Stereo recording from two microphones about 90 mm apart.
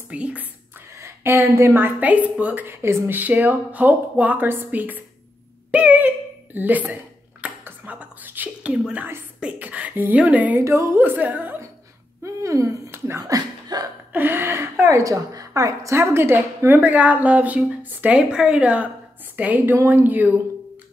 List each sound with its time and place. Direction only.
0.1 s speech: 15° right (ahead or behind)
0.9 s a woman's voice: 30° right (ahead or behind)
5.7 s a sound: 15° right (ahead or behind)
9.4 s speech: 15° right (ahead or behind)
10.6 s speech: 35° right (ahead or behind)
11.0 s speech: 20° right (ahead or behind)
12.2 s speech: 35° right (ahead or behind)
13.2 s speech: 45° right (ahead or behind)
14.1 s a woman's voice: 25° right (ahead or behind)